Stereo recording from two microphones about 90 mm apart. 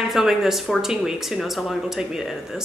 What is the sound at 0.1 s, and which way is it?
Speech, 5° right (ahead or behind).